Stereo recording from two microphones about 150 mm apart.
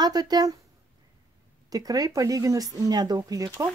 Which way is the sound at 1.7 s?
25° right (ahead or behind).